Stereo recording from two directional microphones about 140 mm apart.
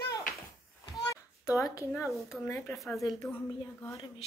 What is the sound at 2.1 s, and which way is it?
Speech, centre (ahead or behind).